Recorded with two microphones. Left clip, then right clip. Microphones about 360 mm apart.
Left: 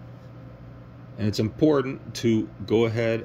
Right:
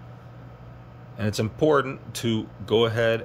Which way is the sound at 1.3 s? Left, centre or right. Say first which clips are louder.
Right 1 dB; right.